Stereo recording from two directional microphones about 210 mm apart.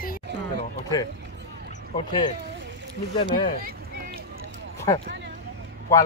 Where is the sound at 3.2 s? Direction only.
25° left (ahead or behind).